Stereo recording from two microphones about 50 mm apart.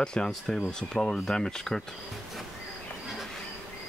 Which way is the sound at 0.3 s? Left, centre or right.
Centre.